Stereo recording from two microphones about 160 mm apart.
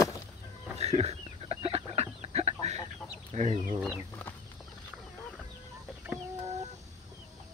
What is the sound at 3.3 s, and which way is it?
Speech, 45° right (ahead or behind).